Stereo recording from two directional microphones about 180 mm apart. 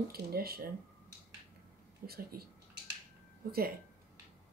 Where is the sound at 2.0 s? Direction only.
60° right (ahead or behind).